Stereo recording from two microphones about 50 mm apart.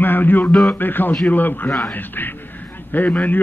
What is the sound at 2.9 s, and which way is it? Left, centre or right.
Speech, left.